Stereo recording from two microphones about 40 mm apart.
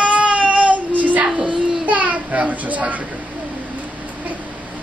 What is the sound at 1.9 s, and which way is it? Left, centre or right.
A child's voice, right.